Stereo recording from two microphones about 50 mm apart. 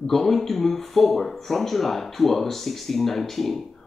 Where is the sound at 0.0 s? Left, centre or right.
Centre.